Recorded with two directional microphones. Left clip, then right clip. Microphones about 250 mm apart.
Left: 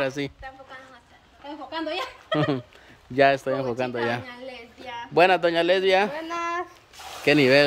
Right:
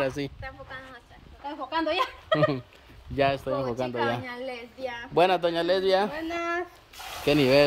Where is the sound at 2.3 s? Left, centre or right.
Centre.